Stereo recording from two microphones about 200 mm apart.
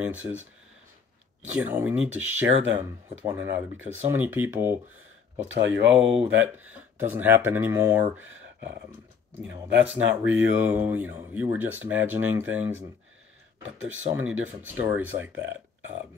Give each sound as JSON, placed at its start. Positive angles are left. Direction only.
{"t": 0.0, "sound": "speech", "side_deg": -10}
{"t": 10.2, "sound": "speech", "side_deg": -10}
{"t": 13.7, "sound": "speech", "side_deg": -75}
{"t": 14.1, "sound": "speech", "side_deg": -10}